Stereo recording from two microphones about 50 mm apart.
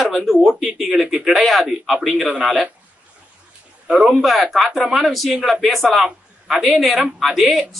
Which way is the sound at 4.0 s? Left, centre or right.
Centre.